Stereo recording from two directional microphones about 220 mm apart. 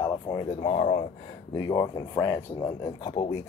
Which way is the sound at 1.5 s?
15° left (ahead or behind).